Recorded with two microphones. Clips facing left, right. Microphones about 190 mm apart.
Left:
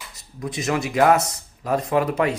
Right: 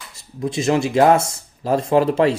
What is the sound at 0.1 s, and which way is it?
Speech, 25° right (ahead or behind).